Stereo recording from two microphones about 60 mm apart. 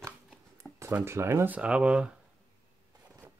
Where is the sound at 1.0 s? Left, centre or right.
Right.